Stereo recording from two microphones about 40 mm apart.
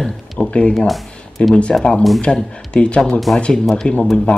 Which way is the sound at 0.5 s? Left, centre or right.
Left.